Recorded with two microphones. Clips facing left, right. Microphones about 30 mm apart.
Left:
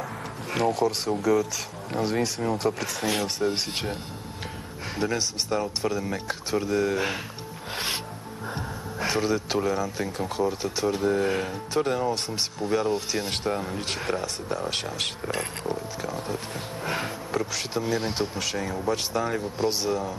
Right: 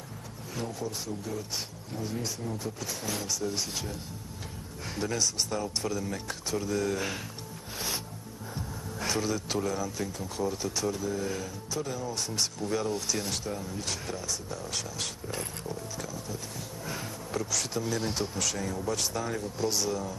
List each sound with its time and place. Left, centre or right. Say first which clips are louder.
0.5 s speech: left 12 dB; left
3.3 s speech: left 6 dB; left
4.9 s speech: left 3 dB; left
7.7 s rub: left 5 dB; left
9.0 s speech: left 5 dB; left
10.9 s speech: left 11 dB; left
12.4 s speech: left 4 dB; left
13.3 s speech: left 7 dB; left
16.8 s sniff: left 9 dB; left
17.3 s speech: left 2 dB; left